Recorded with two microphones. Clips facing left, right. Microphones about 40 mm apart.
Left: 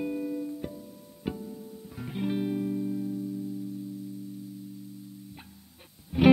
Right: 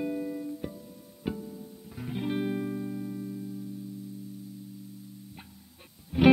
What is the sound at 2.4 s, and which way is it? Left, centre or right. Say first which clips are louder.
Music: left 1 dB; centre.